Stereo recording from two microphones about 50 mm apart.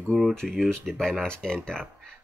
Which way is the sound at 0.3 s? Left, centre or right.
Centre.